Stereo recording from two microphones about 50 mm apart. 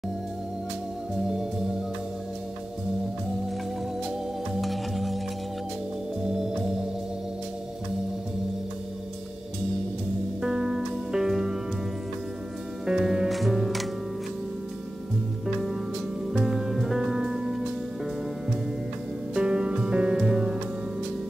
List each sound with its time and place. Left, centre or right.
4.6 s organ: centre
10.4 s music: centre
12.8 s music: centre
13.3 s music: centre
16.3 s music: centre
19.3 s music: centre